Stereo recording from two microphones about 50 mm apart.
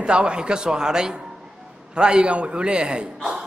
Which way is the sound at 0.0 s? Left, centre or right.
Centre.